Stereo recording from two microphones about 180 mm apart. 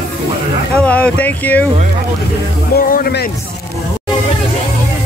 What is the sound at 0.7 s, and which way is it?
Speech, 5° left (ahead or behind).